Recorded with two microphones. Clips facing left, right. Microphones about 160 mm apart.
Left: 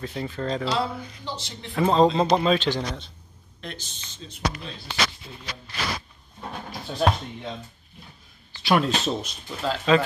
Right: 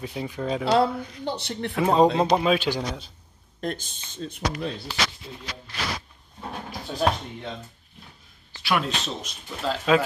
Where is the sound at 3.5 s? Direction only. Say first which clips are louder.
Right 8 dB; 45° right (ahead or behind).